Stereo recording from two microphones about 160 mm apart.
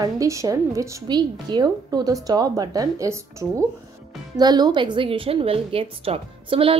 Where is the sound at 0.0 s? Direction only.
20° right (ahead or behind).